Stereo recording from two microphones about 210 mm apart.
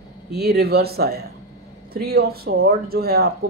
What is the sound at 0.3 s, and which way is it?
Speech, 50° right (ahead or behind).